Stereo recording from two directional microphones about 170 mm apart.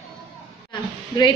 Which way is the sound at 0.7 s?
25° left (ahead or behind).